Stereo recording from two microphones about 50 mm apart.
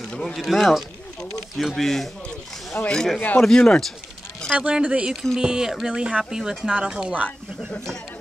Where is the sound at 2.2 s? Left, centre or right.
Centre.